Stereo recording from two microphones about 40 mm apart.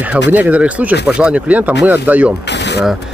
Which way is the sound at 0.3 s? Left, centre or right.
Right.